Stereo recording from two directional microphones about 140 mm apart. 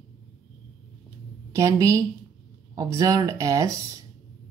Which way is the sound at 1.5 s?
25° right (ahead or behind).